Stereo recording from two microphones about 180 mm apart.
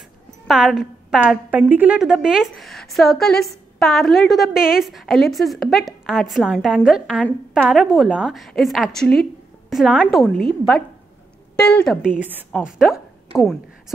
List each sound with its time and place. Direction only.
0.5 s a woman's voice: centre (ahead or behind)
11.6 s a woman's voice: 5° left (ahead or behind)
12.2 s a woman's voice: 10° right (ahead or behind)